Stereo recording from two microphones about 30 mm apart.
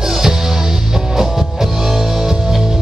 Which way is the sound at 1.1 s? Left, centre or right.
Centre.